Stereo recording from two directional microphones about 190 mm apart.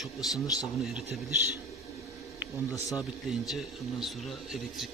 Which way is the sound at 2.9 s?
Centre (ahead or behind).